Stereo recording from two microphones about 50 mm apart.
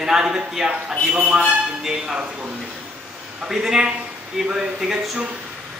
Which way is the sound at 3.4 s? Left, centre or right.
Centre.